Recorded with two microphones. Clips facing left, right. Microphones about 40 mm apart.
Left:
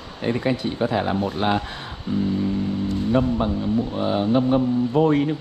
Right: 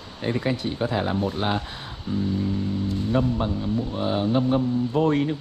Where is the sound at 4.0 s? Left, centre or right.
Left.